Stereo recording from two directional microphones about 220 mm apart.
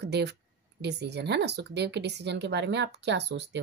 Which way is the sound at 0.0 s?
50° right (ahead or behind).